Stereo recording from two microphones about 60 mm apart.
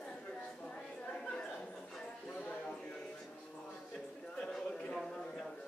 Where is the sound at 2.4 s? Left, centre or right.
Left.